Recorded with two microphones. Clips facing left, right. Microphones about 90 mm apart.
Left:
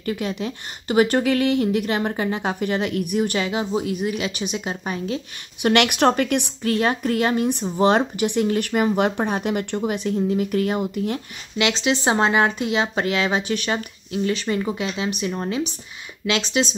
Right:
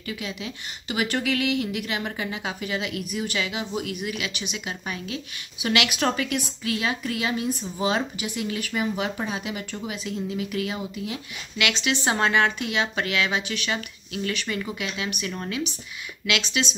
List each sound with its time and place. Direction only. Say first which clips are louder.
0.0 s speech: left 8 dB; 45° left (ahead or behind)
5.6 s a woman's voice: left 7 dB; 50° left (ahead or behind)
8.0 s a woman's voice: left 9 dB; 45° left (ahead or behind)
11.5 s speech: left 5 dB; 25° left (ahead or behind)